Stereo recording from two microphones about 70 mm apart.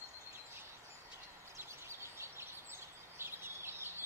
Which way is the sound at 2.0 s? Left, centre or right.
Right.